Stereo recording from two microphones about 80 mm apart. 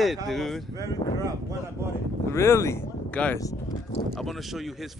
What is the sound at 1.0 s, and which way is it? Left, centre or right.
Speech, left.